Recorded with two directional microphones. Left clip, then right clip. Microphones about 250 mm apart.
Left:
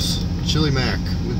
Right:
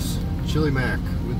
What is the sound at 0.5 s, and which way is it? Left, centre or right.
Speech, centre.